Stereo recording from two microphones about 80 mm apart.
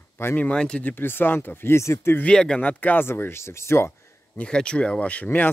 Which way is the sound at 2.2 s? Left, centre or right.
Centre.